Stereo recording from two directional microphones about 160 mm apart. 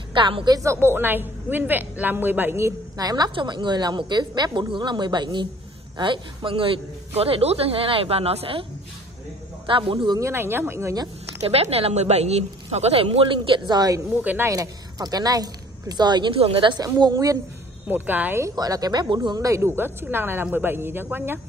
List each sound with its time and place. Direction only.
0.1 s a man's voice: 30° right (ahead or behind)
0.6 s a woman's voice: 15° right (ahead or behind); by 8.6 s 35° right (ahead or behind)
9.7 s a man's voice: 30° right (ahead or behind)
10.2 s a woman's voice: 15° right (ahead or behind)
11.4 s a man's voice: 40° right (ahead or behind); by 14.0 s 25° right (ahead or behind)
14.2 s a woman's voice: 10° right (ahead or behind)
17.8 s a woman's voice: 10° right (ahead or behind)